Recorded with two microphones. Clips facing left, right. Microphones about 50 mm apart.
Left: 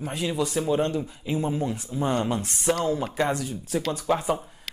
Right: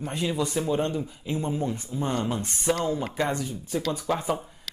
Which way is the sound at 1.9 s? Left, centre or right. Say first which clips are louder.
Left 5 dB; centre.